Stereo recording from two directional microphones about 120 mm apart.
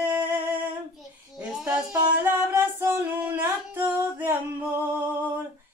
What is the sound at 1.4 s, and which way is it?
Music, 10° right (ahead or behind).